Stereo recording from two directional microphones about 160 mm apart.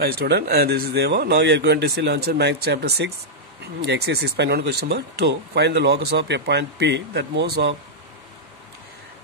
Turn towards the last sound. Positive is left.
turn(degrees=-90)